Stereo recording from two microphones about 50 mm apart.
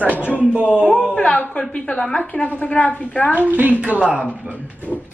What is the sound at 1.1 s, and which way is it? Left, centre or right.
A woman's voice, left.